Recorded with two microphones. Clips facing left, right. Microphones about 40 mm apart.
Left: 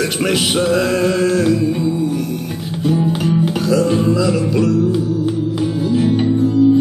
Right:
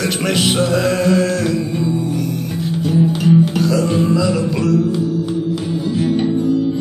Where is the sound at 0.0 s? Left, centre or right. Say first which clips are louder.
Even; centre.